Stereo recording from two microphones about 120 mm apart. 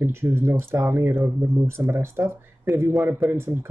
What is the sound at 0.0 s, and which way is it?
Speech, 20° right (ahead or behind).